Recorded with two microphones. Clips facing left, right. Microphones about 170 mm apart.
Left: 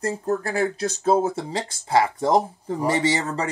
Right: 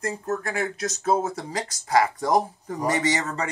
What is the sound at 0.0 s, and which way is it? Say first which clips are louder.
Speech: left 3 dB; 35° left (ahead or behind).